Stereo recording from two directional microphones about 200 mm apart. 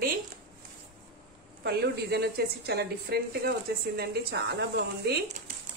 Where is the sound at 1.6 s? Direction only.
55° right (ahead or behind).